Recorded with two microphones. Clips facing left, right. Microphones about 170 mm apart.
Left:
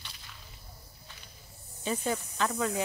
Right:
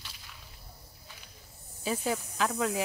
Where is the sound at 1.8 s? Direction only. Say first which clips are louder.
Even; centre (ahead or behind).